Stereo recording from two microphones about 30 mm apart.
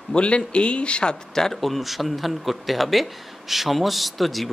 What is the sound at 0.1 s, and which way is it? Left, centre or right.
Speech, left.